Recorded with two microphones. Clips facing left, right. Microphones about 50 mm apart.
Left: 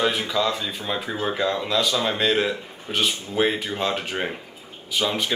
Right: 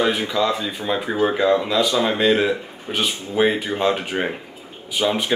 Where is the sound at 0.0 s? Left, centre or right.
Centre.